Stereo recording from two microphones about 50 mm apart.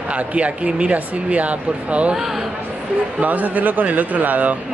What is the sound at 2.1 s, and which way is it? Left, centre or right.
Speech, centre.